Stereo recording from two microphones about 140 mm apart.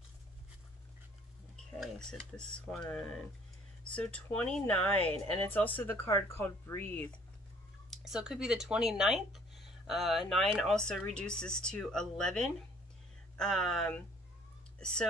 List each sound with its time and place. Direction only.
1.8 s speech: 5° left (ahead or behind)
7.9 s speech: 5° right (ahead or behind)